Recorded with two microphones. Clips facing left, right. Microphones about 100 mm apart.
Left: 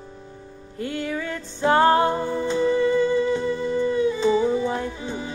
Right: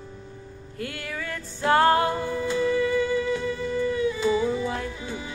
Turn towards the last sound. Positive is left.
turn(degrees=30)  # may be behind; listen again after turning